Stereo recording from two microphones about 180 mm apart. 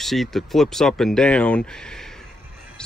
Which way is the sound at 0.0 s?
Centre (ahead or behind).